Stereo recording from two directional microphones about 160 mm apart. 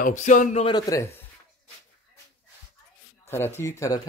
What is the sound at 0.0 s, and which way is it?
Speech, 50° left (ahead or behind).